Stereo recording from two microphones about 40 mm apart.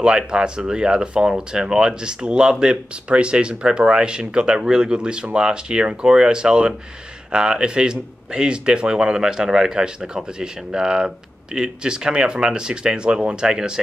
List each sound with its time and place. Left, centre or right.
0.0 s a man's voice: right